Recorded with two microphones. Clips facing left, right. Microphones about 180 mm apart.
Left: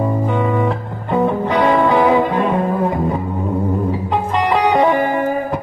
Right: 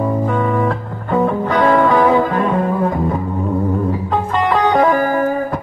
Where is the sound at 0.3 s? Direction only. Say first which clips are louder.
Even; 20° left (ahead or behind).